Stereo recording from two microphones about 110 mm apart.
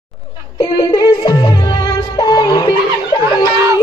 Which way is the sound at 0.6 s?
45° left (ahead or behind).